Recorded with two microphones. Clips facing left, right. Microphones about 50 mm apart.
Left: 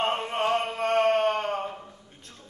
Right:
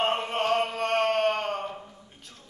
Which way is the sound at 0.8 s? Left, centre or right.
Centre.